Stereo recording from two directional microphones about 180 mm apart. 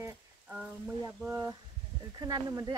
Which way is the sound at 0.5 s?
Centre (ahead or behind).